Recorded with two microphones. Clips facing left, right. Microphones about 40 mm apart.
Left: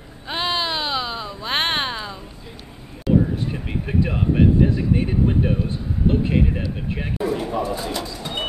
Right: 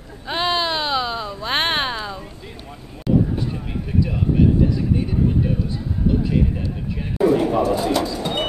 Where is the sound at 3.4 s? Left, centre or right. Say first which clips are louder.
Even; left.